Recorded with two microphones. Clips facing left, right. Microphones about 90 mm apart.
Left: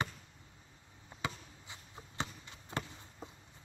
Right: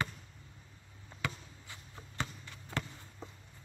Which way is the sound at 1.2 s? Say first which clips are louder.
Right 1 dB; 20° left (ahead or behind).